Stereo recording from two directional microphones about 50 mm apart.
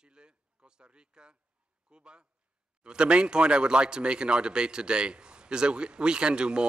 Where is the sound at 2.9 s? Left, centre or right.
Centre.